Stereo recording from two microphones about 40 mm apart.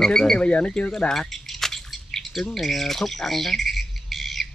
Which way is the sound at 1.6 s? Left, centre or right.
Centre.